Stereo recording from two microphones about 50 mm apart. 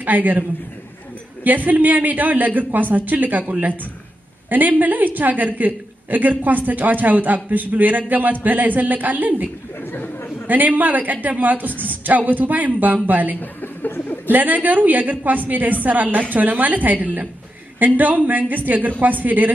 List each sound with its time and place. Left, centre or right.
0.0 s a woman's voice: right
9.8 s chatter: left
10.4 s a woman's voice: right
13.4 s chuckle: left
14.3 s a woman's voice: right